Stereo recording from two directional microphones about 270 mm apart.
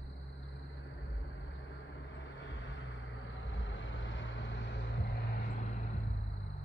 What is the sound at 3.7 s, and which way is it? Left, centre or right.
Vehicle, left.